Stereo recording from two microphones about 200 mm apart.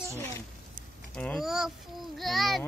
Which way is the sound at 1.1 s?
5° left (ahead or behind).